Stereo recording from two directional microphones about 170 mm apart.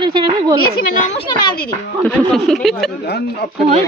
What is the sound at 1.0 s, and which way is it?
Speech, 35° left (ahead or behind).